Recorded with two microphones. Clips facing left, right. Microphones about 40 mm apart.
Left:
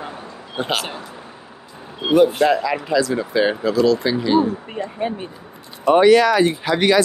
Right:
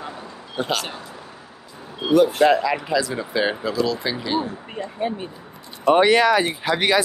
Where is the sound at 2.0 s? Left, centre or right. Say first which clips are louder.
Left 1 dB; left.